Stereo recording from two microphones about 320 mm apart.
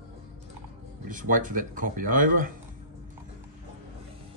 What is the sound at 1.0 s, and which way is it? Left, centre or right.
Speech, right.